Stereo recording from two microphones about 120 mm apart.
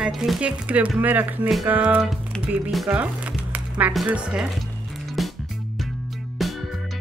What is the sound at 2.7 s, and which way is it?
Music, 5° right (ahead or behind).